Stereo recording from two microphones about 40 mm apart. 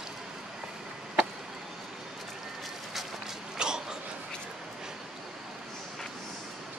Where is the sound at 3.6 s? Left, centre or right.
Centre.